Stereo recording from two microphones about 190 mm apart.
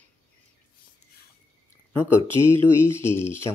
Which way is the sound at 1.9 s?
15° left (ahead or behind).